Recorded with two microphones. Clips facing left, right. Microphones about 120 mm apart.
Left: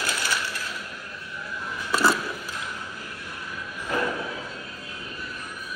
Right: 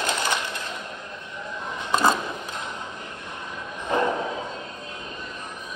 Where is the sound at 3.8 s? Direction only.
25° right (ahead or behind).